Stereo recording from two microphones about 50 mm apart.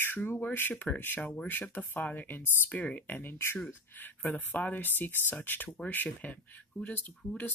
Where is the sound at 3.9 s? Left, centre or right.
Left.